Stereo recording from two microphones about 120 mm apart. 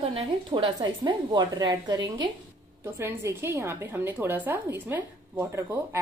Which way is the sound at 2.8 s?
20° right (ahead or behind).